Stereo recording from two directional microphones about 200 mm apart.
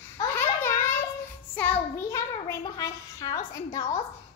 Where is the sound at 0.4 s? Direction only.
10° left (ahead or behind).